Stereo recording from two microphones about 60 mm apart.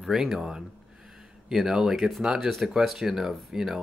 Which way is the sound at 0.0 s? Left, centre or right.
Centre.